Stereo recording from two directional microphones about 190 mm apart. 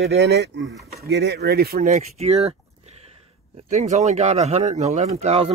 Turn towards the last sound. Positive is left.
turn(degrees=-30)  # may be behind; listen again after turning